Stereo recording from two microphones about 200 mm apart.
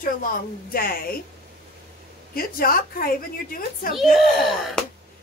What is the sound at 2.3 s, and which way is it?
A woman's voice, 45° left (ahead or behind).